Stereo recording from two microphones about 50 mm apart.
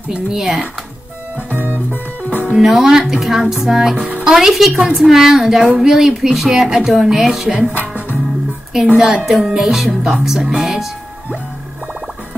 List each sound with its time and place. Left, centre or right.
0.1 s speech: centre
1.5 s music: right
2.5 s a woman's voice: centre
8.9 s a woman's voice: centre